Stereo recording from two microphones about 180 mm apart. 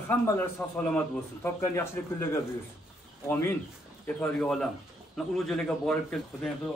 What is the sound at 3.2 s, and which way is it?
A man's voice, 10° left (ahead or behind).